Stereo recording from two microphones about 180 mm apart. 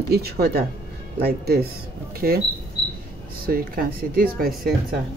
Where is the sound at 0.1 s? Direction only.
60° right (ahead or behind).